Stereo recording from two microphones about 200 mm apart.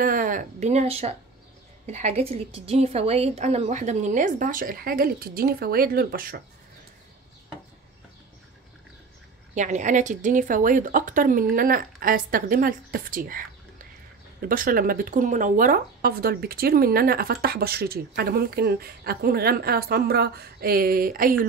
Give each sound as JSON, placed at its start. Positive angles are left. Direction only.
{"t": 0.0, "sound": "a woman's voice", "side_deg": -45}
{"t": 9.6, "sound": "speech", "side_deg": -40}